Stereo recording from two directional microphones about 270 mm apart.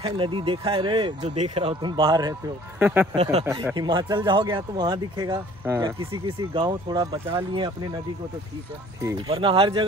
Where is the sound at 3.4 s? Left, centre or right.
Centre.